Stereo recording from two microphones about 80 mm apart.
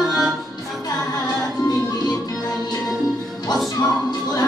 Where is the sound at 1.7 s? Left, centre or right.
Left.